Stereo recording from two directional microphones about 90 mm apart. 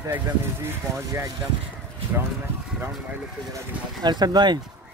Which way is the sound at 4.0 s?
50° right (ahead or behind).